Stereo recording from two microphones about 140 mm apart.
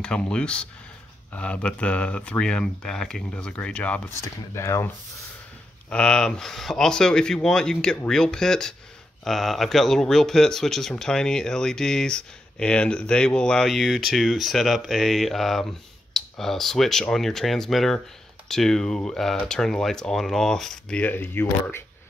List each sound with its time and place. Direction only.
0.0 s speech: 5° left (ahead or behind)
4.2 s speech: 20° left (ahead or behind)
5.9 s speech: 5° left (ahead or behind)